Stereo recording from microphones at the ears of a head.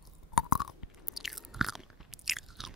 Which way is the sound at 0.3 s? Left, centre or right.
Left.